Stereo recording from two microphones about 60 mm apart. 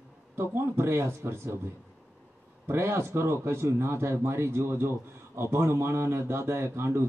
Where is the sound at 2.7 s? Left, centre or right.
Right.